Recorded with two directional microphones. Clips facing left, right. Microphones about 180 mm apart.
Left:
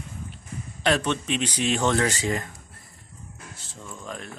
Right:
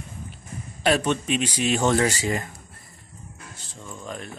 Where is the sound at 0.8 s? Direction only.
10° right (ahead or behind).